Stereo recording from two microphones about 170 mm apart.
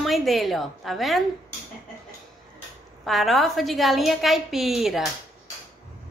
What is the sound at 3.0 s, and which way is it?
A woman's voice, centre (ahead or behind).